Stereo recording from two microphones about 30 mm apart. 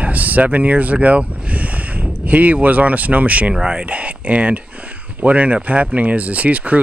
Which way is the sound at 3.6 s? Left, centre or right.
Right.